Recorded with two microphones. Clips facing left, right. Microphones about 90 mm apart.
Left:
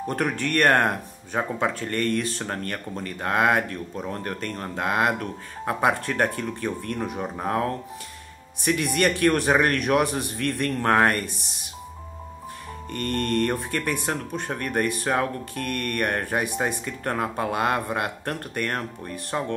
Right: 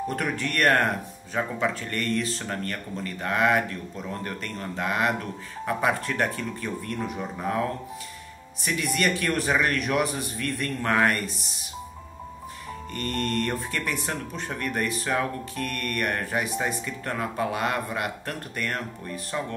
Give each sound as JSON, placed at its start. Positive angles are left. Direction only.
{"t": 0.1, "sound": "speech", "side_deg": 50}
{"t": 0.6, "sound": "speech", "side_deg": 25}
{"t": 3.6, "sound": "speech", "side_deg": 40}
{"t": 6.1, "sound": "speech", "side_deg": 40}
{"t": 6.9, "sound": "speech", "side_deg": 25}
{"t": 8.6, "sound": "speech", "side_deg": 45}
{"t": 10.4, "sound": "speech", "side_deg": 60}
{"t": 10.8, "sound": "speech", "side_deg": 40}
{"t": 12.9, "sound": "speech", "side_deg": 50}
{"t": 14.5, "sound": "speech", "side_deg": 35}
{"t": 16.1, "sound": "speech", "side_deg": 30}
{"t": 17.0, "sound": "speech", "side_deg": 40}